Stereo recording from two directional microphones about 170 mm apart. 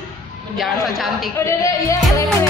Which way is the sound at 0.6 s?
Centre (ahead or behind).